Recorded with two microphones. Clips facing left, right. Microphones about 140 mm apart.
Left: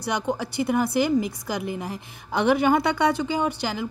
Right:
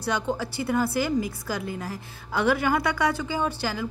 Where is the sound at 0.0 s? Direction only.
15° left (ahead or behind).